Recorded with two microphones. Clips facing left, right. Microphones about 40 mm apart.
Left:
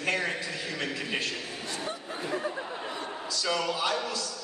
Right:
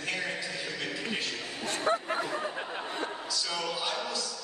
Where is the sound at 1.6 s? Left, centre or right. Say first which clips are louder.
Right 10 dB; right.